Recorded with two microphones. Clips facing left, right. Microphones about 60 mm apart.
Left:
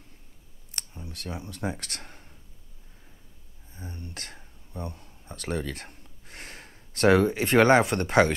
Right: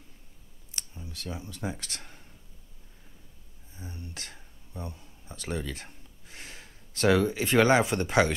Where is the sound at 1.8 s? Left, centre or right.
Left.